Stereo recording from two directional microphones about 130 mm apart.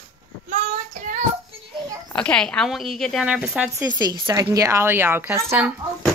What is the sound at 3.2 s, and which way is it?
Speech, 10° right (ahead or behind).